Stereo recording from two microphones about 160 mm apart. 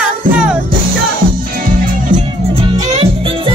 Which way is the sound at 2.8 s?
40° right (ahead or behind).